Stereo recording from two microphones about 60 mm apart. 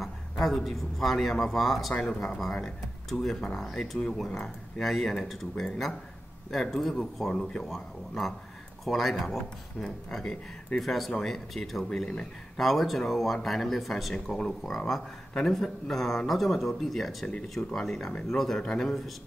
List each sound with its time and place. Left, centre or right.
0.0 s a man's voice: centre
17.3 s speech: centre